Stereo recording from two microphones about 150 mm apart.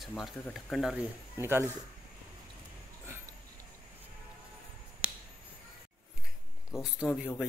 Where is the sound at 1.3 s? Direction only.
15° right (ahead or behind).